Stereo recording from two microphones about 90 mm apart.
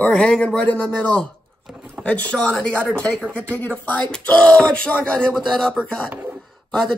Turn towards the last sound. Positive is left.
turn(degrees=5)  # may be behind; listen again after turning